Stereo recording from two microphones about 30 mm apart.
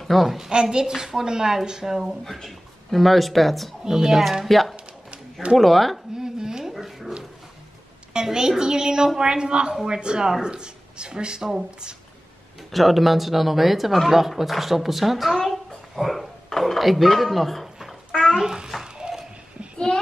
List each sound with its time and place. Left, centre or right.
0.0 s a woman's voice: centre
0.5 s a woman's voice: right; by 2.1 s centre
2.2 s speech: centre
3.8 s speech: centre
4.5 s a sound: centre
5.1 s a sound: right
5.6 s speech: centre
6.1 s a sound: right
6.7 s dog: centre
8.1 s a woman's voice: right
12.7 s a child's voice: centre
18.3 s a woman's voice: right